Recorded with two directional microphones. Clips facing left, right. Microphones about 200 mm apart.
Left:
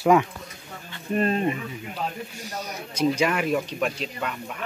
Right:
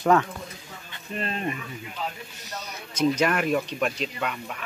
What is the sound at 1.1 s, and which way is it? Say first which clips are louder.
Speech: left 9 dB; 55° left (ahead or behind).